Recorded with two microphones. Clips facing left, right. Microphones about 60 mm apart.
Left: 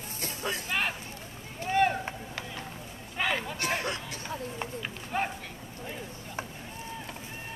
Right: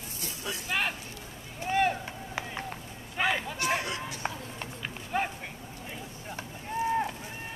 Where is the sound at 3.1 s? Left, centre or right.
Centre.